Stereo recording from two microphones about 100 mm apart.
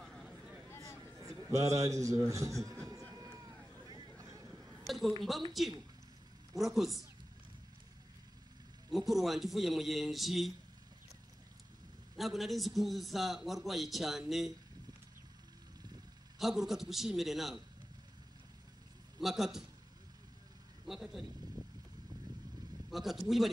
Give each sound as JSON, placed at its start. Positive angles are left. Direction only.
{"t": 0.0, "sound": "a sound", "side_deg": 0}
{"t": 1.2, "sound": "a sound", "side_deg": -30}
{"t": 4.8, "sound": "a sound", "side_deg": 0}
{"t": 5.5, "sound": "a man's voice", "side_deg": 0}
{"t": 8.9, "sound": "a man's voice", "side_deg": 0}
{"t": 12.2, "sound": "a man's voice", "side_deg": 0}
{"t": 16.3, "sound": "a man's voice", "side_deg": -5}
{"t": 19.2, "sound": "a man's voice", "side_deg": -5}
{"t": 20.8, "sound": "a man's voice", "side_deg": 0}
{"t": 21.6, "sound": "vehicle", "side_deg": -40}
{"t": 22.8, "sound": "a man's voice", "side_deg": 0}